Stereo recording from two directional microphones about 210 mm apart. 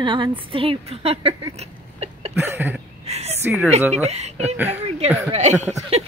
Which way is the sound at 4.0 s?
30° right (ahead or behind).